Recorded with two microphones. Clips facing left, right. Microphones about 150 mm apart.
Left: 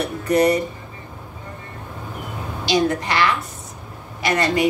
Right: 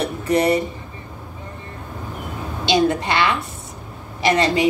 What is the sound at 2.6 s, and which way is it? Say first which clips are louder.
Speech: right 2 dB; 25° right (ahead or behind).